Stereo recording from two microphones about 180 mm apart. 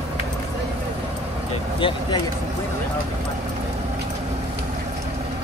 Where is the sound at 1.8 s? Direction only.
25° left (ahead or behind).